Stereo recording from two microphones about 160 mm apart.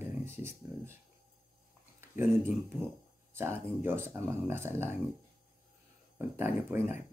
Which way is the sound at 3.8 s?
15° right (ahead or behind).